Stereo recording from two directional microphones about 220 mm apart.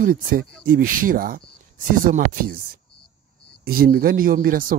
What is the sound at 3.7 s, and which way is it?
Speech, 40° right (ahead or behind).